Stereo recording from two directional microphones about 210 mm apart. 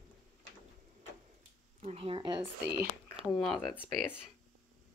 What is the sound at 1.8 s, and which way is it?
Speech, 25° right (ahead or behind).